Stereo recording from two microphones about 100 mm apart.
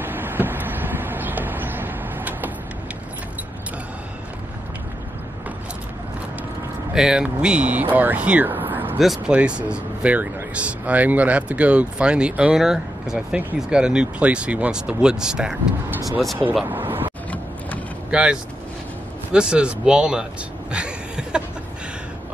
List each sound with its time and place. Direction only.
0.0 s vehicle: 20° right (ahead or behind)
6.9 s speech: 5° right (ahead or behind)
9.0 s speech: centre (ahead or behind)
16.6 s a sound: 20° right (ahead or behind)
18.1 s speech: 10° right (ahead or behind)
20.7 s a sound: 10° right (ahead or behind)